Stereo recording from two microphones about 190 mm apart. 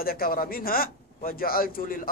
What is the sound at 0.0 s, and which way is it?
A man's voice, 50° left (ahead or behind).